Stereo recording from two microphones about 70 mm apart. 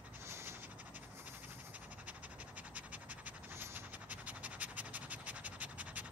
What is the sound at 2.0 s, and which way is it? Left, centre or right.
Scratch, right.